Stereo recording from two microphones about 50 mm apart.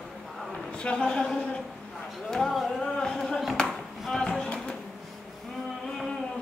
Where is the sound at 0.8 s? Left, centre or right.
Centre.